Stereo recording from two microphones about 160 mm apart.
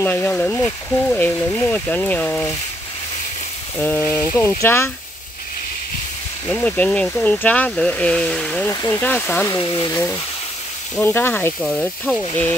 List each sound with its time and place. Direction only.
0.0 s speech: 10° left (ahead or behind)
3.7 s speech: 10° left (ahead or behind)
6.4 s speech: 10° left (ahead or behind)
8.6 s speech: 15° left (ahead or behind)
9.6 s speech: 25° left (ahead or behind)
11.0 s speech: 15° left (ahead or behind)